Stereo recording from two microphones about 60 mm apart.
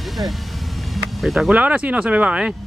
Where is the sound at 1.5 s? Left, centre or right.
Right.